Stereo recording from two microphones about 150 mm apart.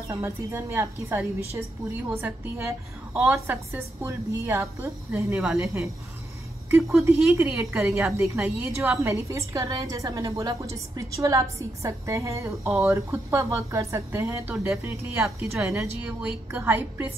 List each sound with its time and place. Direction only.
0.1 s a woman's voice: 15° right (ahead or behind)
15.2 s a woman's voice: 5° right (ahead or behind)